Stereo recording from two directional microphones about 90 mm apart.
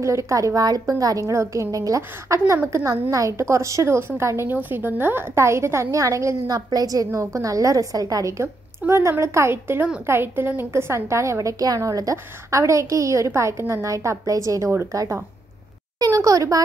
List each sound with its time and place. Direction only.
0.0 s a woman's voice: 35° right (ahead or behind)